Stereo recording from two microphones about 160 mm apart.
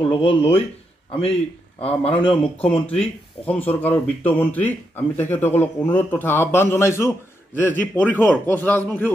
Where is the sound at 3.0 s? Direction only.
10° left (ahead or behind).